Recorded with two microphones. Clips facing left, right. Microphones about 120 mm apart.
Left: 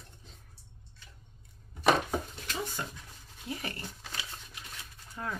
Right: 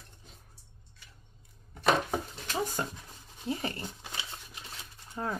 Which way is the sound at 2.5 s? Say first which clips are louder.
Right 5 dB; 40° right (ahead or behind).